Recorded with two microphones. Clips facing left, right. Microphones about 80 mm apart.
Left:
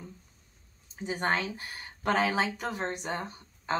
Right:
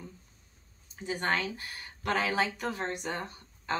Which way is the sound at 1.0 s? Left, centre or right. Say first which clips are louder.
Left 1 dB; left.